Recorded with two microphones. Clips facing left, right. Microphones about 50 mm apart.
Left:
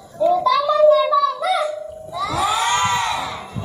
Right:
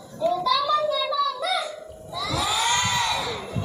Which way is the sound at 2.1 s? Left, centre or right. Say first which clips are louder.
Left 6 dB; left.